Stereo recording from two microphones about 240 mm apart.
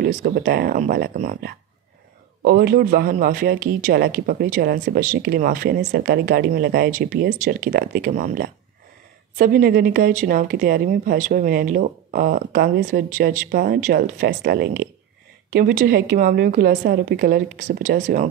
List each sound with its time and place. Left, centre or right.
0.0 s speech: right